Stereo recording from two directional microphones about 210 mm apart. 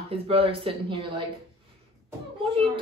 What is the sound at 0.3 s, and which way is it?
Speech, 25° right (ahead or behind).